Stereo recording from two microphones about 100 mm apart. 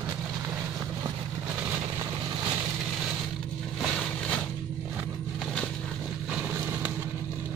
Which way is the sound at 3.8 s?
10° left (ahead or behind).